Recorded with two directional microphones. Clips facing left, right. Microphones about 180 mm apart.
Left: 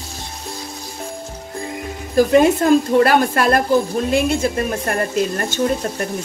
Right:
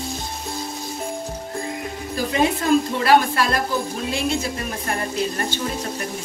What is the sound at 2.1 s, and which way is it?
Speech, 50° left (ahead or behind).